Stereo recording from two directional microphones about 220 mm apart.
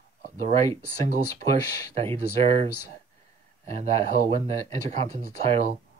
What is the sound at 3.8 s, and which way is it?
Speech, 30° right (ahead or behind).